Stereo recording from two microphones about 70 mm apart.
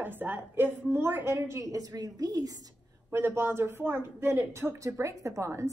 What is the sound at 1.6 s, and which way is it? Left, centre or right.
A woman's voice, right.